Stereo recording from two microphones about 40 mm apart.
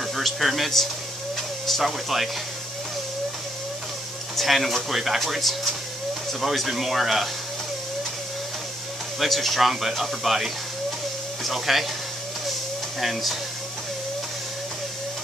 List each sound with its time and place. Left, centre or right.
0.0 s a man's voice: centre
1.9 s speech: centre
4.4 s speech: centre
9.2 s speech: centre
13.0 s speech: centre